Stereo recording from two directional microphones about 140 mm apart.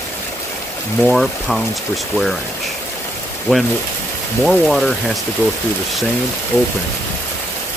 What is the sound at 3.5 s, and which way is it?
Speech, centre (ahead or behind).